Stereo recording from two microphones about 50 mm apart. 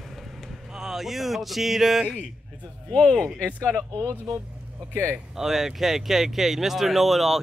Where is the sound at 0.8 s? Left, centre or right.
Centre.